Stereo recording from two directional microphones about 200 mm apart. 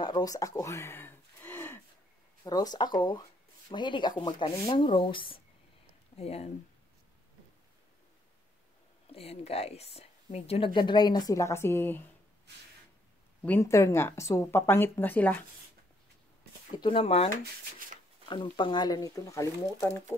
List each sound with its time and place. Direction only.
0.0 s a sound: 20° left (ahead or behind)
2.4 s a woman's voice: 20° left (ahead or behind)
9.1 s a woman's voice: 30° left (ahead or behind); by 12.0 s 10° left (ahead or behind)
13.4 s speech: 10° left (ahead or behind)
16.7 s a woman's voice: 25° left (ahead or behind)
17.3 s speech: 45° right (ahead or behind)
18.3 s speech: 25° left (ahead or behind)